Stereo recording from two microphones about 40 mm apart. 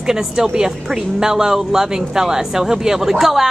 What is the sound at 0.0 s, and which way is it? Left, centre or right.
A woman's voice, centre.